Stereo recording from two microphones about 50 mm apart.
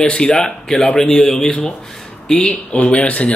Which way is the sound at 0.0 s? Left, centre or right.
Centre.